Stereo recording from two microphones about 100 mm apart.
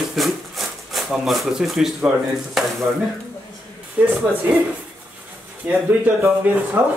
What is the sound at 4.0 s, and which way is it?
Speech, 15° right (ahead or behind).